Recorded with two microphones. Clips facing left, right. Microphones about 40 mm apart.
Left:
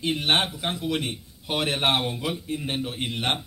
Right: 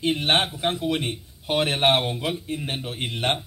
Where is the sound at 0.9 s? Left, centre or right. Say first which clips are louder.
Right 1 dB; centre.